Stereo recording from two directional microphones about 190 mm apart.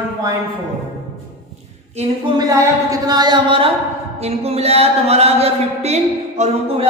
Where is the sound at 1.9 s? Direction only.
35° right (ahead or behind).